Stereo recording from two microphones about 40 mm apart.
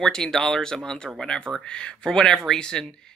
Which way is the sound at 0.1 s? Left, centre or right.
Centre.